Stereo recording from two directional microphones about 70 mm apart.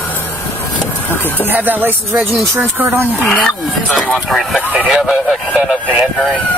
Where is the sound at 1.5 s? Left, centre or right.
Right.